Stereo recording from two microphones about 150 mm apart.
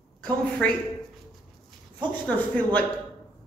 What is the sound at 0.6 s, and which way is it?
Speech, 10° left (ahead or behind).